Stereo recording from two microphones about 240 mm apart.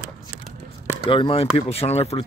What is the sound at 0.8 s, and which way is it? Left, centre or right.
Speech, left.